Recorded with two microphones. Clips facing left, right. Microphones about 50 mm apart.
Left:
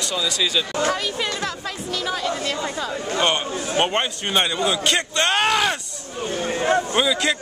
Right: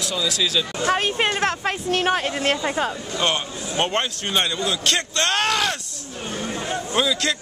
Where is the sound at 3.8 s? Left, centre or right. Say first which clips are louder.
Right 1 dB; centre.